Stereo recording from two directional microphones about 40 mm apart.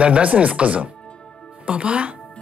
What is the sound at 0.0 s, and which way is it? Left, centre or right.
Speech, right.